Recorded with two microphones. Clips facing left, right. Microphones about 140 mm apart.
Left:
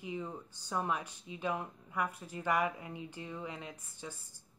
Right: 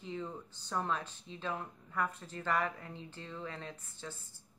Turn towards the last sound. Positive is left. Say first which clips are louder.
# even
turn(degrees=15)  # may be behind; listen again after turning